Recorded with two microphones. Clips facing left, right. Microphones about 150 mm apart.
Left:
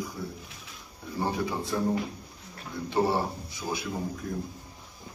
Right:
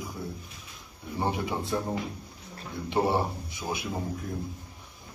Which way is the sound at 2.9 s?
20° right (ahead or behind).